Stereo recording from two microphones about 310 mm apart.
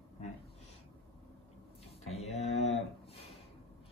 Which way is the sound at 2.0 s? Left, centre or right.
Left.